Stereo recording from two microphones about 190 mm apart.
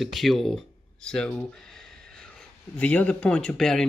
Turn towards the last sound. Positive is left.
turn(degrees=5)  # may be behind; listen again after turning